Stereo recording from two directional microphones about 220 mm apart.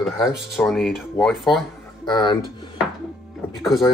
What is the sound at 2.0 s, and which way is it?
Speech, 20° left (ahead or behind).